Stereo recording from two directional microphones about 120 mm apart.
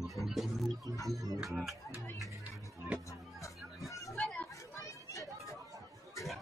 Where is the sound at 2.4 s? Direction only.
15° right (ahead or behind).